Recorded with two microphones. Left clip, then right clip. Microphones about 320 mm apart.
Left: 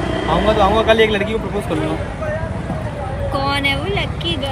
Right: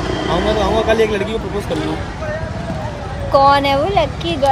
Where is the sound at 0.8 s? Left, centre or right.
Centre.